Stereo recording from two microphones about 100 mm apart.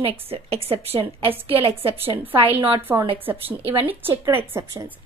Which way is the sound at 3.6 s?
65° right (ahead or behind).